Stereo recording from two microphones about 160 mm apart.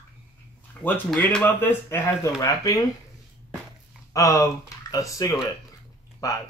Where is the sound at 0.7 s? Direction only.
10° left (ahead or behind).